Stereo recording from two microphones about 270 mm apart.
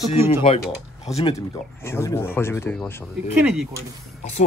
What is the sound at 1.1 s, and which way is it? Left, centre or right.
Speech, centre.